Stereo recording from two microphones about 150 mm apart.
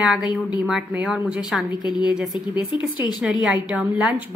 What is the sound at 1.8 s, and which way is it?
Speech, 30° left (ahead or behind).